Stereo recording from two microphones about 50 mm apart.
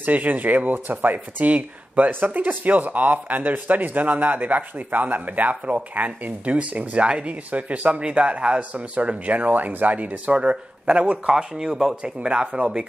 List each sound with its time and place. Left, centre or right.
0.0 s speech: right; by 12.8 s centre